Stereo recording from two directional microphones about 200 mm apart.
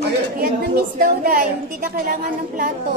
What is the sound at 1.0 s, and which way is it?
A woman's voice, 50° right (ahead or behind).